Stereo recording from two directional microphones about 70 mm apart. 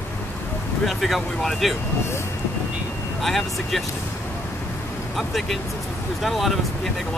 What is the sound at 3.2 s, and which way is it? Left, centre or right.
Speech, centre.